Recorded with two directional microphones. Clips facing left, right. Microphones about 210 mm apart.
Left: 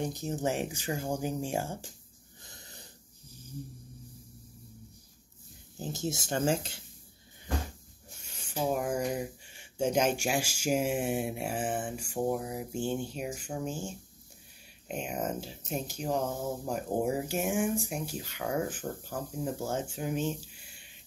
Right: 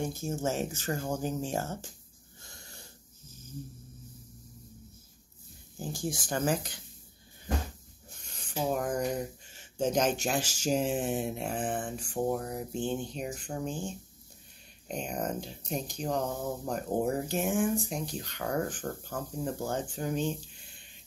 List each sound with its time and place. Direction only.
0.0 s speech: 15° left (ahead or behind)
2.4 s dog: 20° left (ahead or behind)
5.8 s speech: 20° left (ahead or behind)
8.3 s speech: 10° left (ahead or behind)